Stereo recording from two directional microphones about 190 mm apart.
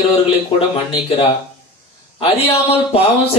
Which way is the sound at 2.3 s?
30° left (ahead or behind).